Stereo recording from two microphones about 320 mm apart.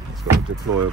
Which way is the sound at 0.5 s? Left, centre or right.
Right.